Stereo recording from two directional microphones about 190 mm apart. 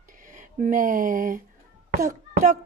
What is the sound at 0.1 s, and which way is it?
Speech, 45° right (ahead or behind).